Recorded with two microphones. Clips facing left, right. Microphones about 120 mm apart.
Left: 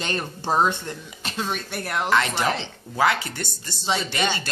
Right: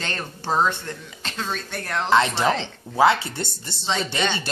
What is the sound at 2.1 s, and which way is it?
Speech, 25° right (ahead or behind).